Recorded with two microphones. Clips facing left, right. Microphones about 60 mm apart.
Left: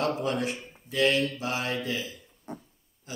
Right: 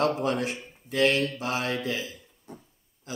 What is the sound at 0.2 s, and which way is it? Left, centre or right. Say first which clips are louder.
A man's voice: right 1 dB; right.